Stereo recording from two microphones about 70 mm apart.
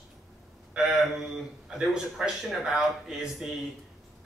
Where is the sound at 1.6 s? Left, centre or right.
Centre.